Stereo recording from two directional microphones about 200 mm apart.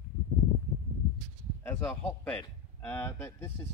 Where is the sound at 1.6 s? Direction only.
10° left (ahead or behind).